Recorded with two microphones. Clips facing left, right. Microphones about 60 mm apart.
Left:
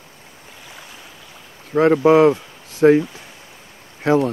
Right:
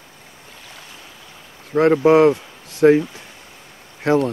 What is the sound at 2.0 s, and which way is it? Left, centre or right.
Speech, left.